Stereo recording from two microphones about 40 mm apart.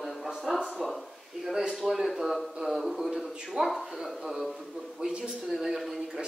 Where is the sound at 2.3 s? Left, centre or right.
Centre.